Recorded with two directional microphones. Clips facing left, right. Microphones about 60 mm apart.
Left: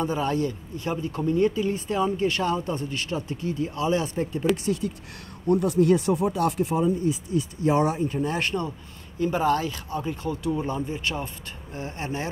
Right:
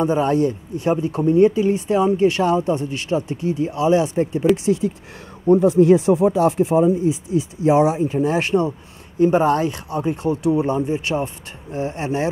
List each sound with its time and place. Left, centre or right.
0.0 s speech: right
4.5 s speech: centre
4.8 s speech: right
5.5 s speech: centre
6.5 s speech: right
7.6 s speech: centre